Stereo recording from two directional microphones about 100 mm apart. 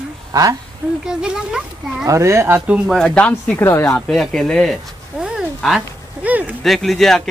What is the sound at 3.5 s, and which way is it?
Speech, 25° left (ahead or behind).